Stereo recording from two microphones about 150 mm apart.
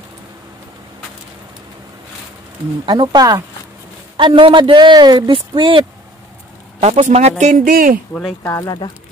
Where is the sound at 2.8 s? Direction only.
30° right (ahead or behind).